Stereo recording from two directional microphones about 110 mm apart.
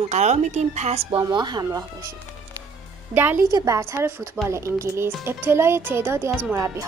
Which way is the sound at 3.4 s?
30° right (ahead or behind).